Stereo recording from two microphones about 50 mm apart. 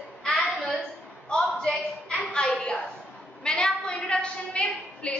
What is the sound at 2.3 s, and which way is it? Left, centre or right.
A woman's voice, centre.